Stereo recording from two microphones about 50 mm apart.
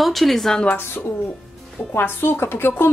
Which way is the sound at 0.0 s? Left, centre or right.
Centre.